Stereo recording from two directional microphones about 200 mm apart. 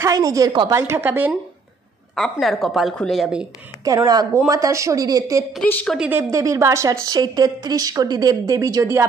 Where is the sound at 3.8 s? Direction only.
20° right (ahead or behind).